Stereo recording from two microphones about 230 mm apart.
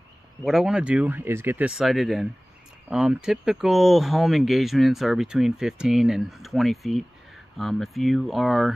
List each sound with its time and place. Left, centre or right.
0.4 s speech: centre